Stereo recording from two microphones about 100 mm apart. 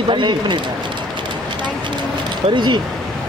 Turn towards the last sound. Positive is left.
turn(degrees=-50)  # may be behind; listen again after turning